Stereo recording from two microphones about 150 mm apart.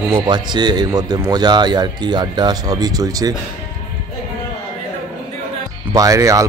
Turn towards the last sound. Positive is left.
turn(degrees=-20)  # may be behind; listen again after turning